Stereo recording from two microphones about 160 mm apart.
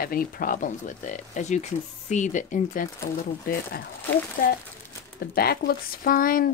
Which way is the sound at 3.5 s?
65° left (ahead or behind).